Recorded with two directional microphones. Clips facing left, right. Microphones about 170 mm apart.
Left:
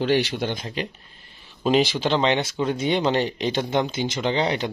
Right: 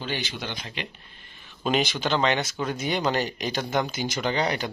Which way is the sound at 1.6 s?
30° left (ahead or behind).